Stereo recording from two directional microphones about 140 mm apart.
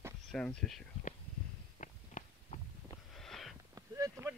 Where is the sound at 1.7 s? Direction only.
60° left (ahead or behind).